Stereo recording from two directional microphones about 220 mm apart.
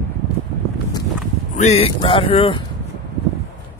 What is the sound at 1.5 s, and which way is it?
Speech, 30° left (ahead or behind).